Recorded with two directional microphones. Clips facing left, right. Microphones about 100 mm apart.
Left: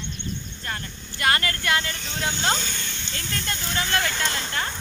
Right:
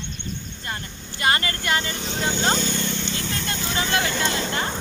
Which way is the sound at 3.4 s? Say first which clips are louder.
Right 1 dB; 20° right (ahead or behind).